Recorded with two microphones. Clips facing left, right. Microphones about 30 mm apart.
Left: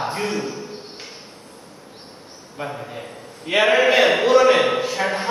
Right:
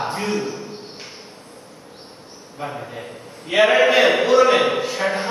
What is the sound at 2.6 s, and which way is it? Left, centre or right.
A man's voice, centre.